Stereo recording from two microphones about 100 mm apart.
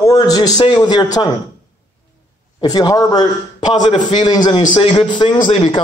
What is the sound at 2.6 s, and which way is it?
A man's voice, 40° left (ahead or behind).